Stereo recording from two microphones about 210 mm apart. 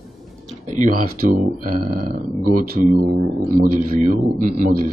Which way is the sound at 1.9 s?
45° right (ahead or behind).